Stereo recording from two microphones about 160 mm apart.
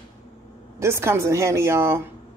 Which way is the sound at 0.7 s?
15° right (ahead or behind).